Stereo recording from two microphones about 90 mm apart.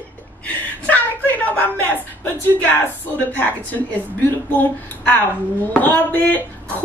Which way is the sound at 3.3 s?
20° left (ahead or behind).